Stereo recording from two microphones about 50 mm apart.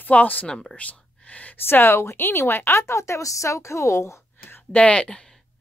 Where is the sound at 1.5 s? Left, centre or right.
Left.